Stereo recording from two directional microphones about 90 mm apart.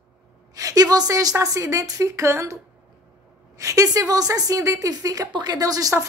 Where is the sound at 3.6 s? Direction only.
35° right (ahead or behind).